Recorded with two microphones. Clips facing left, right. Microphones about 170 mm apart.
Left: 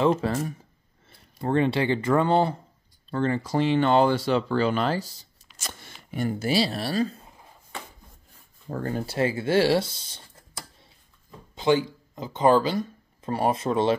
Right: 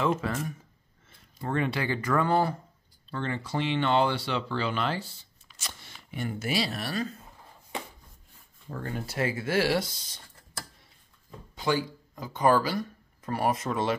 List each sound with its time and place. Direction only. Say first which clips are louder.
0.0 s speech: left 5 dB; 30° left (ahead or behind)
3.1 s speech: left 7 dB; 40° left (ahead or behind)
8.6 s speech: left 6 dB; 40° left (ahead or behind)
11.5 s speech: left 6 dB; 20° left (ahead or behind)